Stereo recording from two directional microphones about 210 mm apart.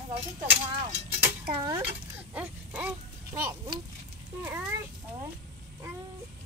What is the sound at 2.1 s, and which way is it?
A child's voice, 10° right (ahead or behind).